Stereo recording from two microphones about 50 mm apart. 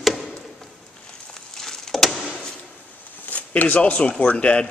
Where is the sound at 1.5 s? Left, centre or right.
Centre.